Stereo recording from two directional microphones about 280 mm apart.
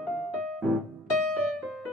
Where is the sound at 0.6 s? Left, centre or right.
Centre.